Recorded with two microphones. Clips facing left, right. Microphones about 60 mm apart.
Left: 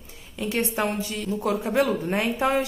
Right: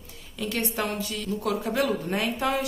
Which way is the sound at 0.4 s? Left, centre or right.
Left.